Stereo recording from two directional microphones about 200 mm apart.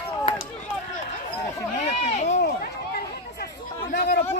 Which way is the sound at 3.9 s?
55° left (ahead or behind).